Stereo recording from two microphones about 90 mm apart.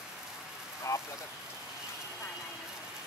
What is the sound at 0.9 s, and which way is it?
Speech, 40° left (ahead or behind).